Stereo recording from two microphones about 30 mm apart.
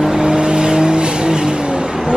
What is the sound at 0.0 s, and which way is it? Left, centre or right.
Vehicle, centre.